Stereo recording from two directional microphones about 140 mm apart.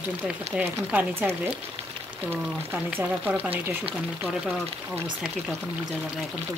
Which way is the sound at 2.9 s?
10° right (ahead or behind).